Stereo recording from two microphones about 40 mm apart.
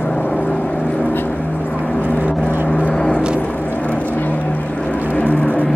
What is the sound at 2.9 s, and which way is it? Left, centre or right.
Vehicle, centre.